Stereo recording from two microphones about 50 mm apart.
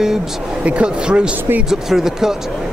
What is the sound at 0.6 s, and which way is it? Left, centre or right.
Speech, right.